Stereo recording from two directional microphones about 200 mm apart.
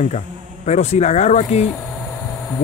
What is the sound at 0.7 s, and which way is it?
Speech, 35° left (ahead or behind).